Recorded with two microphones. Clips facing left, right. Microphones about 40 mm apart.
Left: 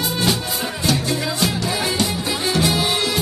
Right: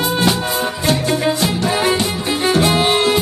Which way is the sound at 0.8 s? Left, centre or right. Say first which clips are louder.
Right 4 dB; right.